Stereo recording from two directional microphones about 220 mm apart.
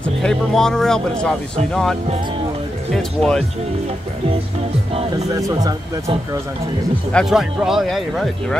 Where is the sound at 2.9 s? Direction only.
Centre (ahead or behind).